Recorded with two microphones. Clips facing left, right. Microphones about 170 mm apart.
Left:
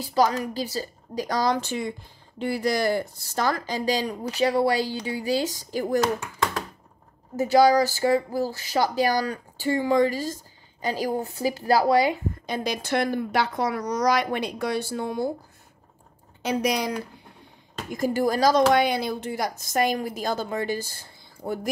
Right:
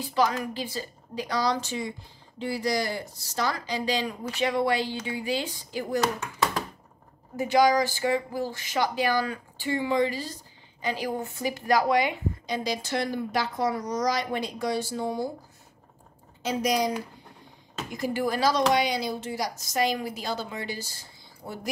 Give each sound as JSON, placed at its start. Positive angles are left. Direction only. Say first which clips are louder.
{"t": 0.0, "sound": "speech", "louder": "left 3 dB", "side_deg": 40}
{"t": 7.3, "sound": "speech", "louder": "left 4 dB", "side_deg": 40}
{"t": 12.4, "sound": "speech", "louder": "left 3 dB", "side_deg": 55}
{"t": 16.4, "sound": "a woman's voice", "louder": "left 1 dB", "side_deg": 65}
{"t": 17.9, "sound": "speech", "louder": "left 4 dB", "side_deg": 45}
{"t": 18.7, "sound": "speech", "louder": "left 4 dB", "side_deg": 55}